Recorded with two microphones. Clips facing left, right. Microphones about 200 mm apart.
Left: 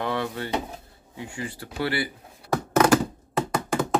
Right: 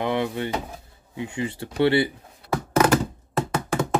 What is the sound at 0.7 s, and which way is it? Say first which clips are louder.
Speech: even; 20° right (ahead or behind).